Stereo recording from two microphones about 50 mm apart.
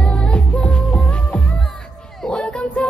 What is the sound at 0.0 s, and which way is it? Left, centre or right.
Music, left.